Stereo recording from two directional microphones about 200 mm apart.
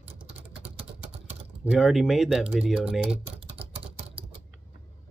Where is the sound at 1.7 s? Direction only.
Centre (ahead or behind).